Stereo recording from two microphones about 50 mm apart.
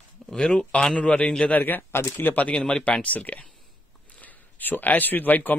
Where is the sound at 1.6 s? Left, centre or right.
Left.